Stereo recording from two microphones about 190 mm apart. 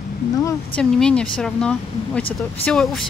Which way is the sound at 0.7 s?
5° left (ahead or behind).